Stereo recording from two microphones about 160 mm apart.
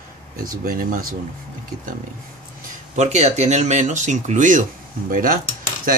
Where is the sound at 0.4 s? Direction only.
65° right (ahead or behind).